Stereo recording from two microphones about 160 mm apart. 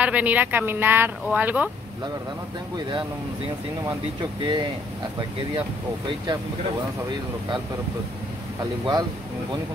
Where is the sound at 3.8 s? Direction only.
30° right (ahead or behind).